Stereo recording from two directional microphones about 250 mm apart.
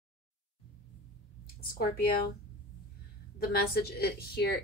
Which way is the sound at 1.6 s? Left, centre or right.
Left.